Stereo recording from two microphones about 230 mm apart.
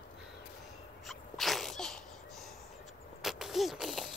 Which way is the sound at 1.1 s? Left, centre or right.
Centre.